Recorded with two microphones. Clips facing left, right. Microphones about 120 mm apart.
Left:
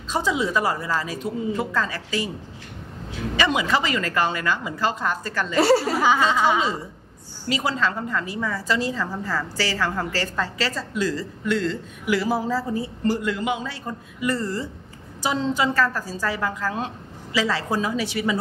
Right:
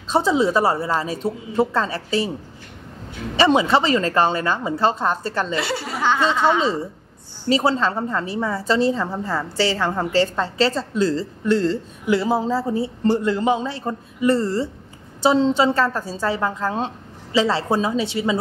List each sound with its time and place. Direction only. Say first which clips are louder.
0.1 s a woman's voice: right 5 dB; 30° right (ahead or behind)
3.3 s a woman's voice: right 6 dB; 30° right (ahead or behind)
5.6 s speech: left 8 dB; 40° left (ahead or behind)
5.9 s speech: even; 10° left (ahead or behind)
7.4 s a woman's voice: right 5 dB; 30° right (ahead or behind)